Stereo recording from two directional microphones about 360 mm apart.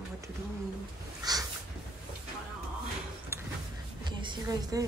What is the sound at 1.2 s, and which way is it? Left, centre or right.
Speech, centre.